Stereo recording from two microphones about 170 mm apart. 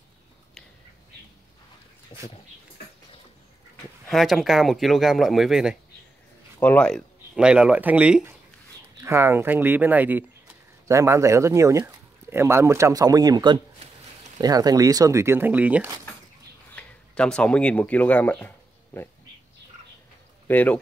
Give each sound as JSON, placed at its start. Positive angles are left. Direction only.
{"t": 2.1, "sound": "speech", "side_deg": 25}
{"t": 4.1, "sound": "speech", "side_deg": 0}
{"t": 6.6, "sound": "speech", "side_deg": 10}
{"t": 7.3, "sound": "speech", "side_deg": -5}
{"t": 16.7, "sound": "speech", "side_deg": 5}
{"t": 20.4, "sound": "speech", "side_deg": 10}